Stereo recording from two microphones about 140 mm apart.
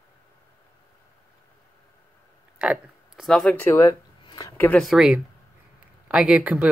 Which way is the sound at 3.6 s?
20° left (ahead or behind).